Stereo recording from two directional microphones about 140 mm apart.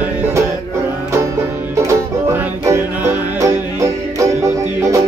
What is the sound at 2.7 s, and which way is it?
Music, 20° right (ahead or behind).